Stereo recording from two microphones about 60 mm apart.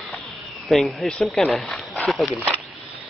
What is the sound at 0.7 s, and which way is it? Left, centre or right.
Speech, centre.